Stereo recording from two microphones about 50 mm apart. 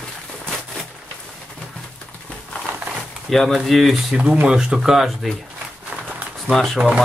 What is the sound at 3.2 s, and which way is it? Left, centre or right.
Speech, centre.